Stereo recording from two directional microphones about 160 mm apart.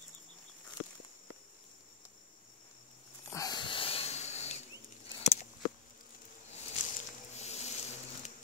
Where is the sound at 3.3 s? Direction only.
20° left (ahead or behind); by 5.5 s 45° left (ahead or behind).